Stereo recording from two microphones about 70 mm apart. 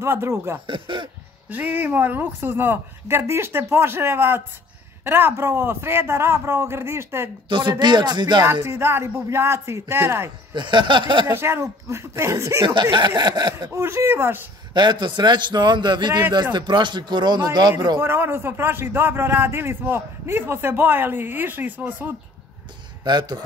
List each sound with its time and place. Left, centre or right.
0.0 s speech: right
1.5 s speech: right
7.8 s a man's voice: right
8.6 s speech: right
12.9 s speech: right
13.7 s speech: right
14.7 s a man's voice: right
17.9 s speech: right
23.0 s a man's voice: right